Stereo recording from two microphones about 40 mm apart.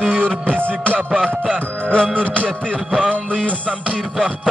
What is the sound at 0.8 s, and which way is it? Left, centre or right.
Music, right.